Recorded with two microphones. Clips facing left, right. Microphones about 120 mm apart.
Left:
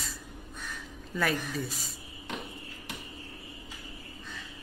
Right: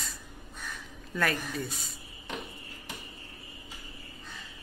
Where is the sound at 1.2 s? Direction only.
Centre (ahead or behind).